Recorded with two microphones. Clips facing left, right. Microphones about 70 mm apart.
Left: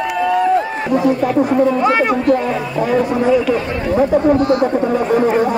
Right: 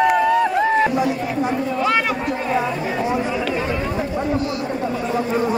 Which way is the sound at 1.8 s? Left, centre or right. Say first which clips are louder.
Left 5 dB; left.